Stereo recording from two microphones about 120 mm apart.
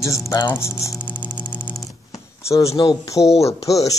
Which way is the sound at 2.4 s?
25° left (ahead or behind).